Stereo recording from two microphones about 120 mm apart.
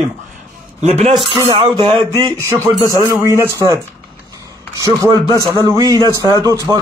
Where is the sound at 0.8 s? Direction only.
65° right (ahead or behind).